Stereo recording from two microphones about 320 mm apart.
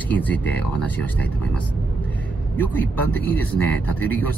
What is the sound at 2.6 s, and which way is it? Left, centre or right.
Speech, centre.